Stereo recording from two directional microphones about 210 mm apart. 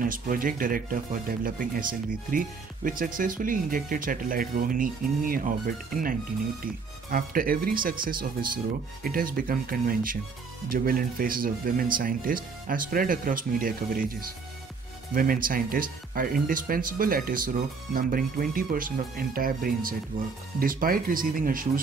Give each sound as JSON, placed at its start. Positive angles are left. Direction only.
{"t": 0.0, "sound": "speech", "side_deg": -40}
{"t": 6.6, "sound": "speech", "side_deg": -45}
{"t": 15.1, "sound": "speech", "side_deg": -40}